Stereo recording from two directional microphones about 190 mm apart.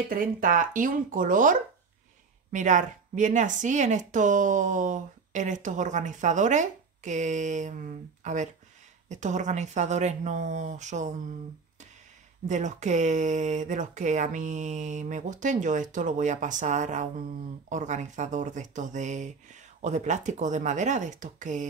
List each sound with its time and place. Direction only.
0.1 s speech: 45° right (ahead or behind)
12.4 s speech: 40° right (ahead or behind)